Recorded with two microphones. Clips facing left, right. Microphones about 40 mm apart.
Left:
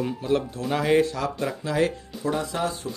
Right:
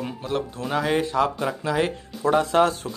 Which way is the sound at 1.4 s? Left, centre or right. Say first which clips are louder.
Right 1 dB; centre.